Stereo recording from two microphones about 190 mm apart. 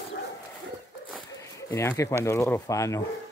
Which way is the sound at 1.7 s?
15° left (ahead or behind).